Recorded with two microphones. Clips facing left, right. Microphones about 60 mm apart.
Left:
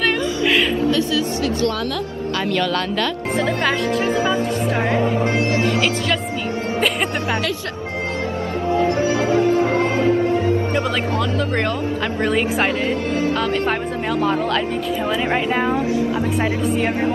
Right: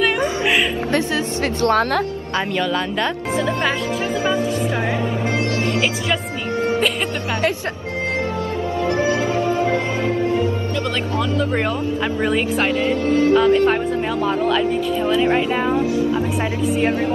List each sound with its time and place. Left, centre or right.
0.8 s speech: right
2.5 s a woman's voice: centre
4.9 s speech: left
8.9 s music: right
9.6 s music: left
12.2 s speech: centre
12.8 s music: left
13.3 s a woman's voice: centre
14.2 s speech: centre